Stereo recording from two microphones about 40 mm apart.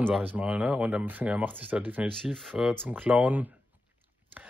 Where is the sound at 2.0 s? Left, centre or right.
Right.